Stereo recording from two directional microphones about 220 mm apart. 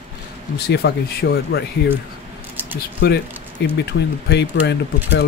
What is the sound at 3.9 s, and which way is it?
Speech, 50° left (ahead or behind).